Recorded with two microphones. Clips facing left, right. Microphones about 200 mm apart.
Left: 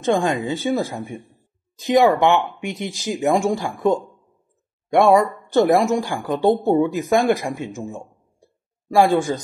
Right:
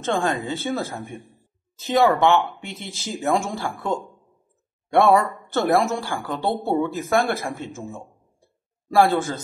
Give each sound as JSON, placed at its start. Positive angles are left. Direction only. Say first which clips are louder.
{"t": 0.0, "sound": "speech", "louder": "left 4 dB", "side_deg": 15}